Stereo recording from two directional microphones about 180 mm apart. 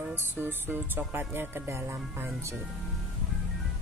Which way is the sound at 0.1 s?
10° right (ahead or behind).